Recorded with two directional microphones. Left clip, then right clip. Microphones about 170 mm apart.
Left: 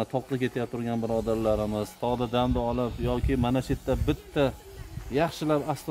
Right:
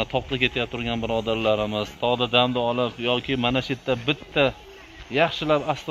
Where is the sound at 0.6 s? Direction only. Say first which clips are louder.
Right 4 dB; 10° left (ahead or behind).